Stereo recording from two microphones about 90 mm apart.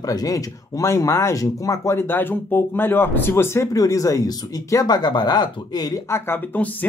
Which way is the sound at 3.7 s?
40° left (ahead or behind).